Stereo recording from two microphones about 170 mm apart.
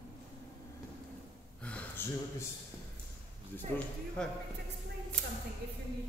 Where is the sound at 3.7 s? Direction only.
5° left (ahead or behind).